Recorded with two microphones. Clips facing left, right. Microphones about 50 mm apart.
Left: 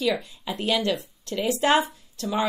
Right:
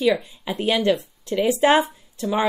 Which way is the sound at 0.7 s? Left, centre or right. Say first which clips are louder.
Right 5 dB; right.